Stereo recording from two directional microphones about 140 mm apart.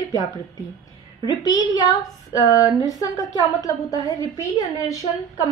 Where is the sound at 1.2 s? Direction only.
30° left (ahead or behind).